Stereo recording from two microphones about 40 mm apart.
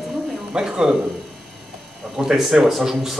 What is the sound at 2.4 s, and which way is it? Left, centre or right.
Speech, centre.